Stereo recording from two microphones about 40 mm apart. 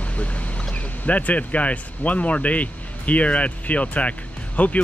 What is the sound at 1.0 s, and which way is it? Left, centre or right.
Speech, left.